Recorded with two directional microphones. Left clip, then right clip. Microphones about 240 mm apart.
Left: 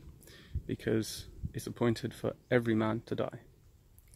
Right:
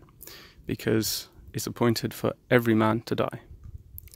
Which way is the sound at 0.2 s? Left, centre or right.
Right.